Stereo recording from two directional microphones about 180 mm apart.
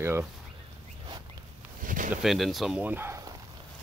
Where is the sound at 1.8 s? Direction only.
45° right (ahead or behind).